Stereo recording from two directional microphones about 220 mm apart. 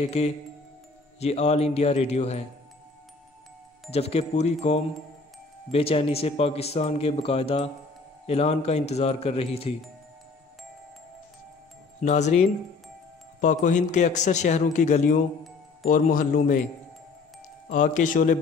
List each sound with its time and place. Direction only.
0.0 s speech: 30° left (ahead or behind)
3.9 s speech: 25° left (ahead or behind)
12.0 s speech: 30° left (ahead or behind)
17.6 s speech: 35° left (ahead or behind)